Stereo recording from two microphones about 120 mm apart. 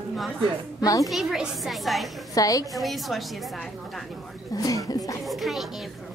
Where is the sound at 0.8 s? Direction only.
30° left (ahead or behind).